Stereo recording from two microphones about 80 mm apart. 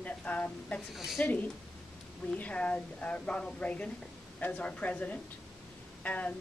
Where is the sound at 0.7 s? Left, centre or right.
Centre.